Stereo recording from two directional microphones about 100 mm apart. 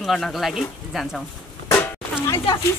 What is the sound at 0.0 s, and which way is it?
Speech, centre (ahead or behind).